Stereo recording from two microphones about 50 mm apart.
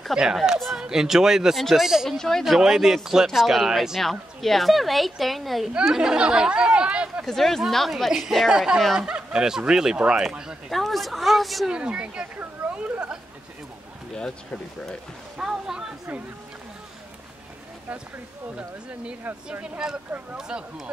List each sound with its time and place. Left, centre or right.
0.1 s a woman's voice: centre
2.0 s speech: centre
2.6 s a woman's voice: centre
5.9 s speech: centre
7.2 s a woman's voice: centre
10.7 s a woman's voice: centre
11.7 s speech: right
12.7 s a sound: right
14.1 s speech: centre
15.3 s speech: centre
19.8 s speech: centre